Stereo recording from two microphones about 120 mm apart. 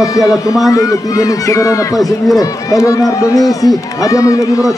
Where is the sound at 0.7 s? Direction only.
25° left (ahead or behind).